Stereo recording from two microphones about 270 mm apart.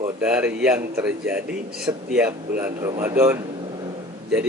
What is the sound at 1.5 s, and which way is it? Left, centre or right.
Speech, right.